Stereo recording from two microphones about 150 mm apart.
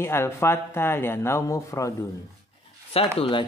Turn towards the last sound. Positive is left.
turn(degrees=35)  # may be behind; listen again after turning